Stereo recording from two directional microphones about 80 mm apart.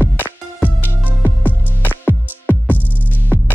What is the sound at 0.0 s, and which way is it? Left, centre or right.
Music, left.